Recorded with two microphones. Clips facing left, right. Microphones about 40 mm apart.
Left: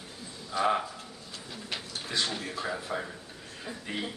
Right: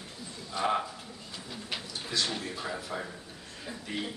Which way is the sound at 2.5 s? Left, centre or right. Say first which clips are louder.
Left 2 dB; centre.